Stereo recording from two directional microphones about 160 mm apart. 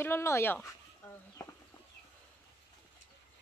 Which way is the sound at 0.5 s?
15° left (ahead or behind).